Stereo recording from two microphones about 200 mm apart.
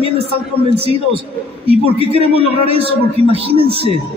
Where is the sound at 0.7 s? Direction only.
30° right (ahead or behind).